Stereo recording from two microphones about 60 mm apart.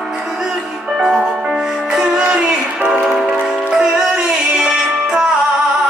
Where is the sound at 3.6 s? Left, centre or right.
Centre.